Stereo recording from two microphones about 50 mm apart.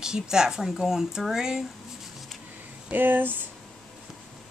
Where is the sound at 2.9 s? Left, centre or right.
Right.